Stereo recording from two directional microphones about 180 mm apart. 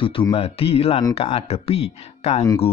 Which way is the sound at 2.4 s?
25° left (ahead or behind).